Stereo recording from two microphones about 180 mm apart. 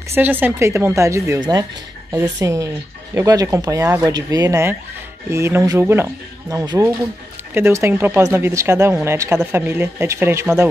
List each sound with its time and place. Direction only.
0.1 s speech: 10° right (ahead or behind)